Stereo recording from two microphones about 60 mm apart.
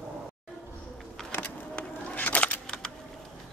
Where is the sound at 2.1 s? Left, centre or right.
Left.